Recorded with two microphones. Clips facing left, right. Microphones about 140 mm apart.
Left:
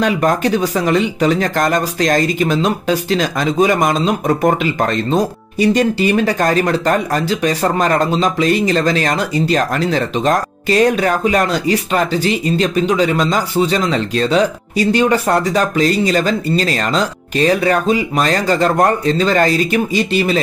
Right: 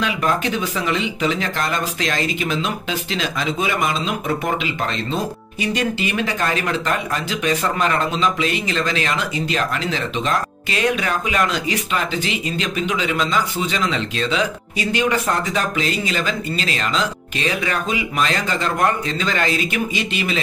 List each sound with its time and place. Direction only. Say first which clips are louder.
0.0 s speech: left 6 dB; 40° left (ahead or behind)